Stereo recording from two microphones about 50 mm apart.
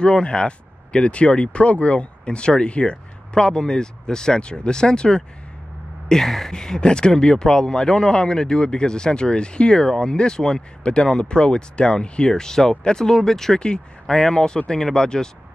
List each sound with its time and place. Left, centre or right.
0.0 s speech: centre